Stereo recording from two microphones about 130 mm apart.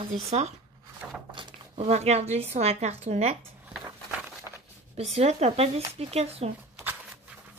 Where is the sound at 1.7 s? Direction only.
55° right (ahead or behind).